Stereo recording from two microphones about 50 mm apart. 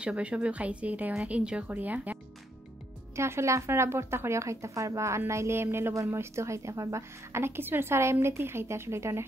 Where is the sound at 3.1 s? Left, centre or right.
Right.